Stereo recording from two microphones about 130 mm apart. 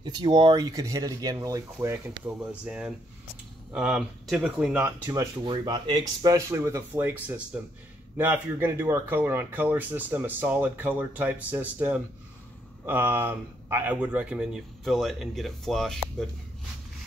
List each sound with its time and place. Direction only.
0.0 s speech: 35° right (ahead or behind); by 2.3 s 20° right (ahead or behind)
2.4 s speech: 10° right (ahead or behind)
5.0 s speech: 30° right (ahead or behind)
6.3 s speech: 20° right (ahead or behind); by 16.3 s centre (ahead or behind)